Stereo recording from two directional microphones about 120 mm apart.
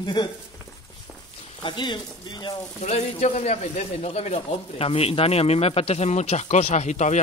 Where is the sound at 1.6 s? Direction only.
40° left (ahead or behind).